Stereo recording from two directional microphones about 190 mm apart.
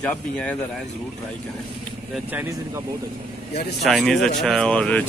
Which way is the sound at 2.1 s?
10° right (ahead or behind).